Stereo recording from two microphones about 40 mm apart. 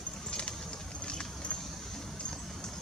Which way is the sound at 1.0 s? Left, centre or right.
Left.